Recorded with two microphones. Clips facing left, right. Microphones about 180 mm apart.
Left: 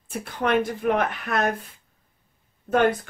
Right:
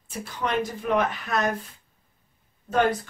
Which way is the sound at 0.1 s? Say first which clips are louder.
Left 5 dB; 55° left (ahead or behind).